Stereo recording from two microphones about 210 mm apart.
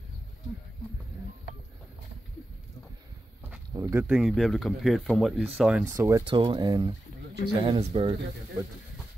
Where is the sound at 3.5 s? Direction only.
10° right (ahead or behind).